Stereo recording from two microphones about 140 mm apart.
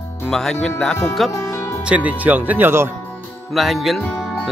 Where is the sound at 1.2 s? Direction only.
20° left (ahead or behind).